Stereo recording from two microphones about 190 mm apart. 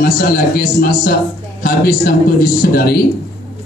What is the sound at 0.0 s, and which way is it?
Speech, 50° left (ahead or behind).